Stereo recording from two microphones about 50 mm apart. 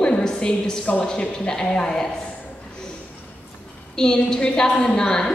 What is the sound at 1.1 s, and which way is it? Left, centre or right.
A woman's voice, centre.